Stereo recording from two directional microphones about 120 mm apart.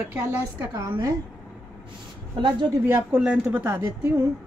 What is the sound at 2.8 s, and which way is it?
A woman's voice, 10° right (ahead or behind).